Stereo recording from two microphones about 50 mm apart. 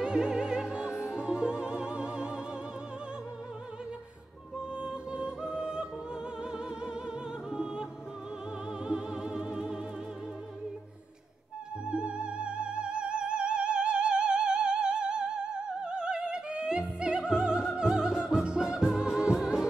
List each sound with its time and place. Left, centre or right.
0.0 s music: centre
4.6 s music: centre
8.8 s music: centre
11.8 s music: centre
17.3 s opera: centre